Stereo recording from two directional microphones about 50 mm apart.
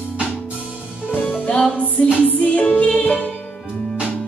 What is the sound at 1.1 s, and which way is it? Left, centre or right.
Music, left.